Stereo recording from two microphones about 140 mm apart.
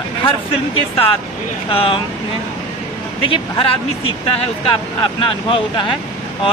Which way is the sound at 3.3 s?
40° left (ahead or behind).